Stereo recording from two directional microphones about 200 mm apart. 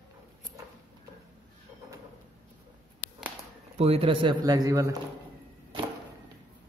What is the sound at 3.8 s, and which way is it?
Mantra, 30° right (ahead or behind).